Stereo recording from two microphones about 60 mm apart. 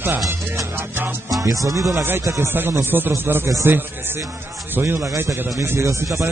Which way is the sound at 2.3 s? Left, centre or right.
Right.